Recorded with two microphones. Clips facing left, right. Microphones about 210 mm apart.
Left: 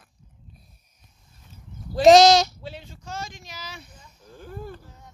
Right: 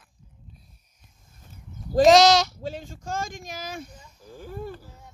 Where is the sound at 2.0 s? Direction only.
45° right (ahead or behind).